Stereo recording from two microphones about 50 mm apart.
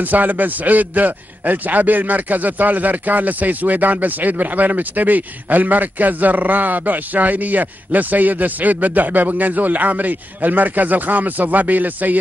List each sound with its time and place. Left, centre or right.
0.0 s a man's voice: right